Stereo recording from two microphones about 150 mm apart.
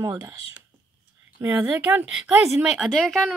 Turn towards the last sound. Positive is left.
turn(degrees=0)  # may be behind; listen again after turning